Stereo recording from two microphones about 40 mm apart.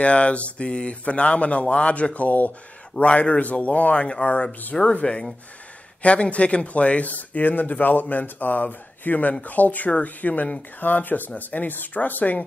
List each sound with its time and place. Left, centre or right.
0.0 s a man's voice: left
6.0 s a man's voice: left
10.8 s speech: left